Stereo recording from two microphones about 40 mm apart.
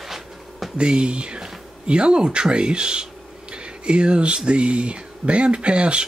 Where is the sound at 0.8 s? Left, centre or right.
Right.